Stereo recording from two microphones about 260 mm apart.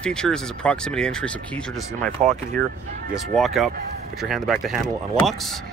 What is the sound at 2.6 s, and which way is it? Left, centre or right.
Speech, right.